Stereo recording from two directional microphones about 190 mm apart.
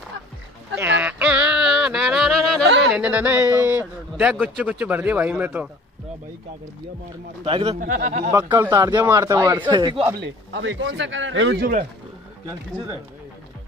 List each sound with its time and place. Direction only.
0.7 s a sound: 10° right (ahead or behind)
2.6 s a sound: 70° right (ahead or behind)
2.9 s a man's voice: 5° right (ahead or behind)
7.4 s a man's voice: 30° right (ahead or behind)
7.8 s speech: 45° right (ahead or behind)
8.3 s a man's voice: 15° right (ahead or behind)
10.1 s speech: 65° right (ahead or behind)